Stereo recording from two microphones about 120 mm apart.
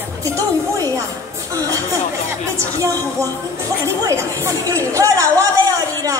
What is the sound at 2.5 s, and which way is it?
Speech, 25° right (ahead or behind).